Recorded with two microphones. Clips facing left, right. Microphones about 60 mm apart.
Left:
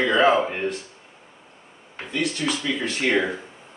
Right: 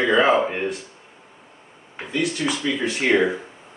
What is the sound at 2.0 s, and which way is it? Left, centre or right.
Speech, centre.